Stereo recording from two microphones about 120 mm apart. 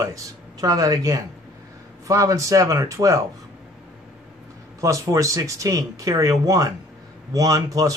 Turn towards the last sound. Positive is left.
turn(degrees=-30)  # may be behind; listen again after turning